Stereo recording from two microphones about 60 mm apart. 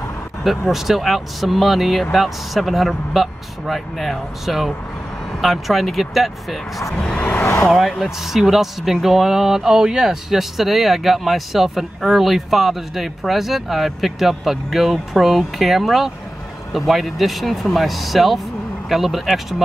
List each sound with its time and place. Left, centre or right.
0.4 s speech: centre
7.0 s vehicle: centre
8.0 s speech: centre